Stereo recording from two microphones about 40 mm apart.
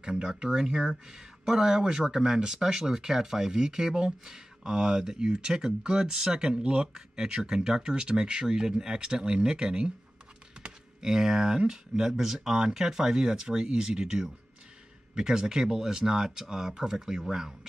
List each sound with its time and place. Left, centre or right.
0.2 s speech: centre
11.0 s speech: centre